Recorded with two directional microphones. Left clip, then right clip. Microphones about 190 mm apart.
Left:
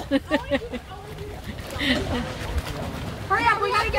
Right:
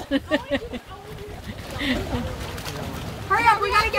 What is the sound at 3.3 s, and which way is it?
Vehicle, 55° right (ahead or behind).